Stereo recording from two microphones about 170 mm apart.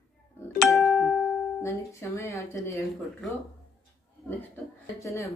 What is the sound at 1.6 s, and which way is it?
Speech, 15° left (ahead or behind).